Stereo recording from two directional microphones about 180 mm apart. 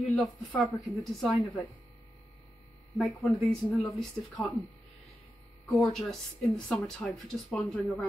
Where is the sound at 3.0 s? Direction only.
Centre (ahead or behind).